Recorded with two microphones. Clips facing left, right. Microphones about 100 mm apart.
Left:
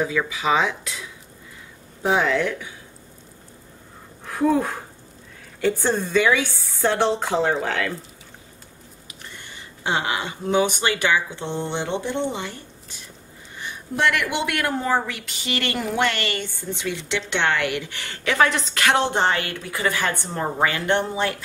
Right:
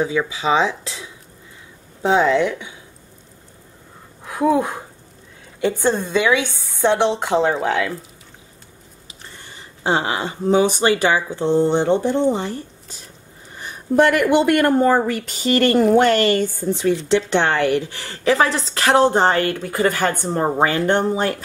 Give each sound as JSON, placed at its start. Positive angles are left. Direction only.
{"t": 0.3, "sound": "speech", "side_deg": -30}
{"t": 2.0, "sound": "speech", "side_deg": -25}
{"t": 4.3, "sound": "a woman's voice", "side_deg": -15}
{"t": 9.2, "sound": "speech", "side_deg": -35}
{"t": 20.4, "sound": "speech", "side_deg": -35}